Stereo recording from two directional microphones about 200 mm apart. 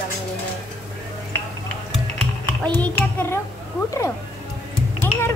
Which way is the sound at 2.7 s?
10° left (ahead or behind).